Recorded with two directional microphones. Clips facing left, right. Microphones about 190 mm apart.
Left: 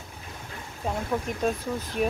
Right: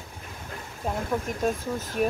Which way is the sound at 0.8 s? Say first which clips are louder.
Even; centre (ahead or behind).